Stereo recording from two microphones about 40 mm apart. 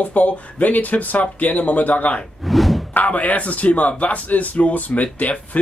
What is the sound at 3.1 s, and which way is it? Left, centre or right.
Speech, left.